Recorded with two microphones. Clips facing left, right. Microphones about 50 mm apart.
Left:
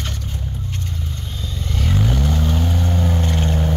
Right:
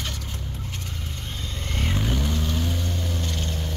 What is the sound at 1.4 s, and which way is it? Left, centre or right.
Vehicle, right.